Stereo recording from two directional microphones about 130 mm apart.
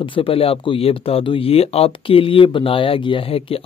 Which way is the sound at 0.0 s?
40° left (ahead or behind).